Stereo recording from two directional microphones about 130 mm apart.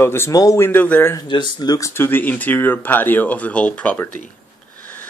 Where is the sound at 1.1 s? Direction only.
35° left (ahead or behind).